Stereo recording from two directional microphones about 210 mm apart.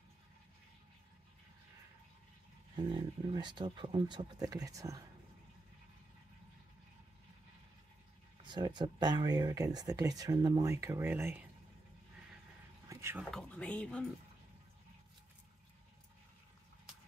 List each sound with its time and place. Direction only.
2.7 s speech: 20° right (ahead or behind)
8.4 s speech: 20° right (ahead or behind)
12.8 s a sound: 15° right (ahead or behind)
13.3 s speech: 5° left (ahead or behind)